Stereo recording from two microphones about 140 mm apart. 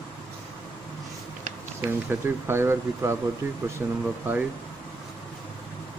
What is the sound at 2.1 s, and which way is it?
A man's voice, 15° right (ahead or behind).